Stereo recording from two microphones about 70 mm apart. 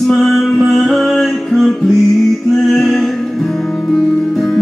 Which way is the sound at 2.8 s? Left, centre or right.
Centre.